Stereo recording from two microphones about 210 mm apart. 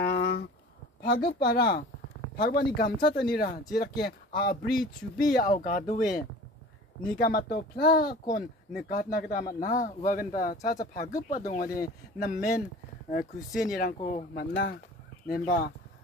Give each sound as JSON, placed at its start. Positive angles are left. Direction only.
{"t": 0.0, "sound": "a sound", "side_deg": 55}
{"t": 1.0, "sound": "speech", "side_deg": 50}
{"t": 7.2, "sound": "speech", "side_deg": 45}
{"t": 13.6, "sound": "speech", "side_deg": 40}
{"t": 14.5, "sound": "speech", "side_deg": 55}